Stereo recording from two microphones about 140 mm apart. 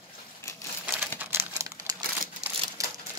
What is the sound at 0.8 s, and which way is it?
Crumpling, 15° right (ahead or behind).